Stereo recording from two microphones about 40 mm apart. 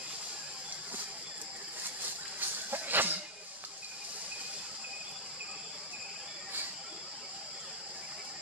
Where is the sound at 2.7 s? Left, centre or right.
Right.